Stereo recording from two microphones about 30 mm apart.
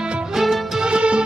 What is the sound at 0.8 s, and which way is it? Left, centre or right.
Music, right.